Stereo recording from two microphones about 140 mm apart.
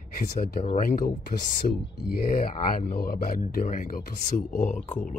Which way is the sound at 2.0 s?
90° left.